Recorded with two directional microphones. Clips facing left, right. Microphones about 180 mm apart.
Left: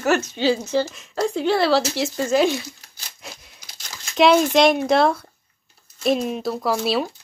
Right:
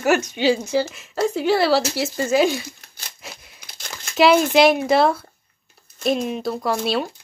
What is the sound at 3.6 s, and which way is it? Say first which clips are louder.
Crumpling: right 4 dB; 55° right (ahead or behind).